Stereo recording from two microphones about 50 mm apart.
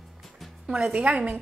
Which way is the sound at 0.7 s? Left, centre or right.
Right.